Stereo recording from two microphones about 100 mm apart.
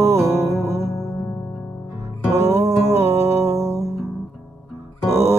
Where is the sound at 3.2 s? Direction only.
30° right (ahead or behind).